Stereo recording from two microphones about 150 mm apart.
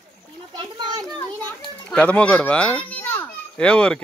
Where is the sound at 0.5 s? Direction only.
30° right (ahead or behind).